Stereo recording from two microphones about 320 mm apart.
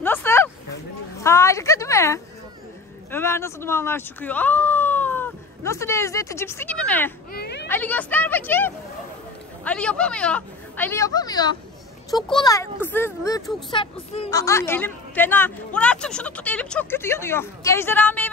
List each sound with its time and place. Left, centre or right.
0.0 s a sound: centre
1.2 s a woman's voice: centre
7.3 s baby cry: left
7.6 s a woman's voice: centre